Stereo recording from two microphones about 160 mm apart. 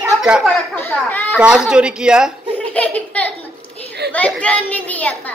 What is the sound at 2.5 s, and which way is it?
Laughter, 10° left (ahead or behind).